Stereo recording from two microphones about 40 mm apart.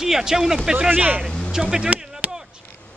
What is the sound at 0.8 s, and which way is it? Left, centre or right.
Speech, right.